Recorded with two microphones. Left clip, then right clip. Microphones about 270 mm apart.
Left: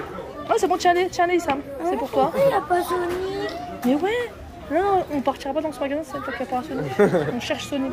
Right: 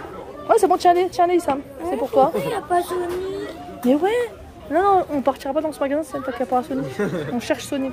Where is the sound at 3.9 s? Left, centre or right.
Centre.